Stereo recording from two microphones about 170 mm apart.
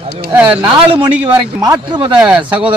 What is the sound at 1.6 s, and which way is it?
Speech, 25° right (ahead or behind).